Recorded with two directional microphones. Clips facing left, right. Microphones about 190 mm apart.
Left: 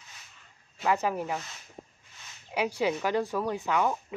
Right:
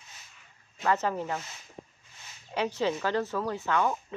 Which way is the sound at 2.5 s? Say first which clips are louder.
Left 1 dB; 10° left (ahead or behind).